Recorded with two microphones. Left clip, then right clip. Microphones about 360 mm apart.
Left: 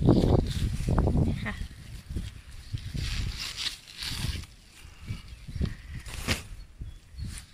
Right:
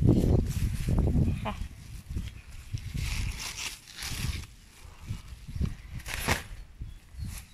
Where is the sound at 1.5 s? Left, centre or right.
Centre.